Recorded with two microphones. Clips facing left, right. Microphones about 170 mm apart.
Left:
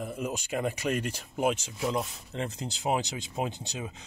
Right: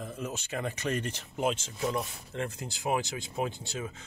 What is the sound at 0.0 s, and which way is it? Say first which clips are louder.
Speech: left 4 dB; 15° left (ahead or behind).